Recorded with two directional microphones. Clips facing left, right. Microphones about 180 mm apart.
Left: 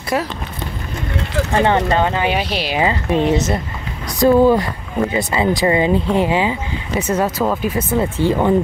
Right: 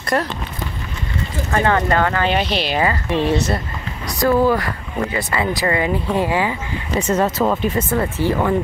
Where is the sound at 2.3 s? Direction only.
5° left (ahead or behind).